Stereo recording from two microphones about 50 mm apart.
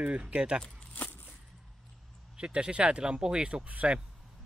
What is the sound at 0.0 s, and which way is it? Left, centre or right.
Speech, right.